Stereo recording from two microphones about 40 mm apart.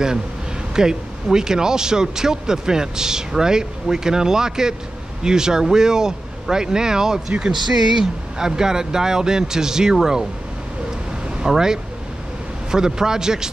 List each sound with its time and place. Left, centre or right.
0.7 s speech: centre
7.5 s speech: centre
7.8 s speech: centre
11.4 s speech: centre